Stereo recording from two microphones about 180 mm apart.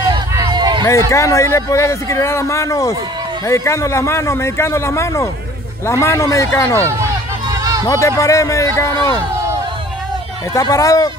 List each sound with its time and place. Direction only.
0.0 s a sound: 15° right (ahead or behind)
0.8 s speech: 15° left (ahead or behind)
6.8 s speech: 15° right (ahead or behind)
7.8 s speech: 20° left (ahead or behind)
10.5 s speech: 20° left (ahead or behind)